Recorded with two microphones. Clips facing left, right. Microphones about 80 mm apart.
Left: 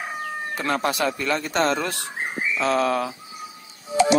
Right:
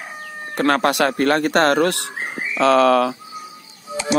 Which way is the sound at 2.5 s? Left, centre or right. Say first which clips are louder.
Right 8 dB; right.